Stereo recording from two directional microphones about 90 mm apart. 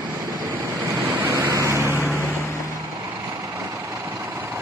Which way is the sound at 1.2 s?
30° right (ahead or behind).